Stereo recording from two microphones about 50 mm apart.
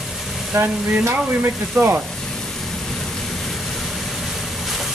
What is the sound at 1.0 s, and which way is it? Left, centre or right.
Speech, right.